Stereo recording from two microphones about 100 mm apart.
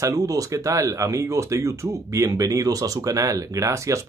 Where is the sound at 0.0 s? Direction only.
35° right (ahead or behind).